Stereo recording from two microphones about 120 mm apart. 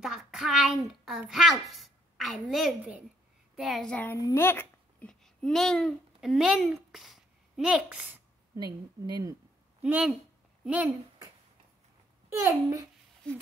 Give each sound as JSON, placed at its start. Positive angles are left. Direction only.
{"t": 0.0, "sound": "a sound", "side_deg": 0}
{"t": 1.3, "sound": "a woman's voice", "side_deg": 0}
{"t": 3.9, "sound": "a woman's voice", "side_deg": 15}
{"t": 5.0, "sound": "a child's voice", "side_deg": 5}
{"t": 8.5, "sound": "speech", "side_deg": -35}
{"t": 9.8, "sound": "a woman's voice", "side_deg": -10}
{"t": 12.3, "sound": "a child's voice", "side_deg": -25}